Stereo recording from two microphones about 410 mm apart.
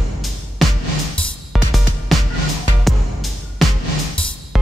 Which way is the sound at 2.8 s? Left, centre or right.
Centre.